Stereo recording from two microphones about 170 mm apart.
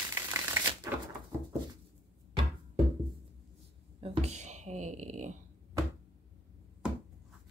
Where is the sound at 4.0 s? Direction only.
35° right (ahead or behind).